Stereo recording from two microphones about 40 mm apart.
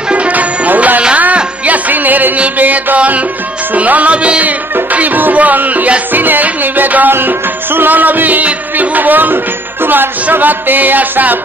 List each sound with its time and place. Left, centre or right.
0.1 s music: right
4.9 s music: right
7.1 s music: right